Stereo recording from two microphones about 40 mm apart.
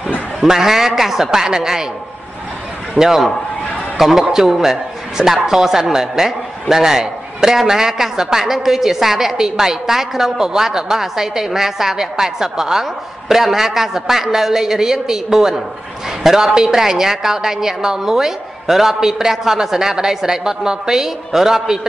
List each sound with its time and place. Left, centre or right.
0.4 s a man's voice: centre
3.0 s a man's voice: centre